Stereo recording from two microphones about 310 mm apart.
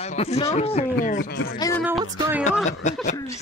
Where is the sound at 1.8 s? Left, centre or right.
Centre.